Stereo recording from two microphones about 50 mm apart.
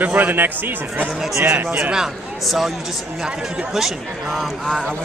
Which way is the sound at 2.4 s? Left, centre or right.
Centre.